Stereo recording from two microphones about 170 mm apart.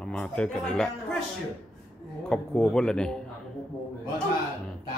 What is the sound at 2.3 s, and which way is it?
Speech, 5° left (ahead or behind).